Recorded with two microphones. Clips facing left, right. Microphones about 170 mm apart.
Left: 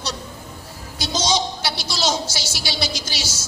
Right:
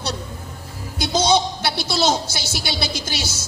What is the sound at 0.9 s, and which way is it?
A woman's voice, 60° right (ahead or behind).